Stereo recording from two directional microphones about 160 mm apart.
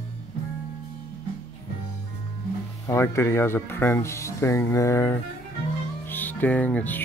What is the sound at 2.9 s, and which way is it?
Speech, 15° left (ahead or behind).